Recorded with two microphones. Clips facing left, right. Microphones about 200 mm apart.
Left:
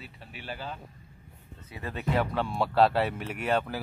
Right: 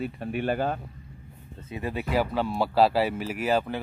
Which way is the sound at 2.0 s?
5° right (ahead or behind).